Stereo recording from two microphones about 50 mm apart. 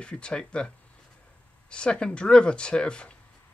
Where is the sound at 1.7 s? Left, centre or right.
Centre.